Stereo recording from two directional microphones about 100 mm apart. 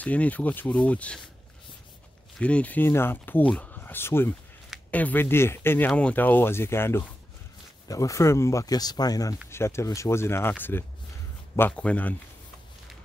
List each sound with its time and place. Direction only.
0.0 s speech: 15° left (ahead or behind)
2.3 s speech: 10° left (ahead or behind)
5.9 s speech: 10° left (ahead or behind); by 9.4 s 40° left (ahead or behind)
9.5 s speech: 25° left (ahead or behind)